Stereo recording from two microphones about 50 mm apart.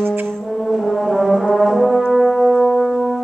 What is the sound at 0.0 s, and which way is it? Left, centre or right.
Brass instrument, right.